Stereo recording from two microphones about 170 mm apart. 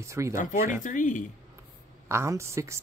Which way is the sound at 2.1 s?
15° right (ahead or behind).